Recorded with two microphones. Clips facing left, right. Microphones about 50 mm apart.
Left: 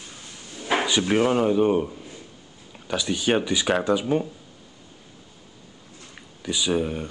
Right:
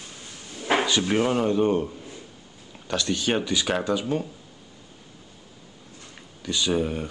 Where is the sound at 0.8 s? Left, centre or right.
Centre.